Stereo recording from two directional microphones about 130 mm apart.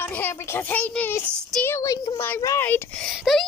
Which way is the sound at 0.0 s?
15° left (ahead or behind).